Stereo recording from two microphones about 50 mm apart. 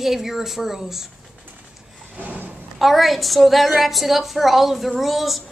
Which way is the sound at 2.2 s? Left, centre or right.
Right.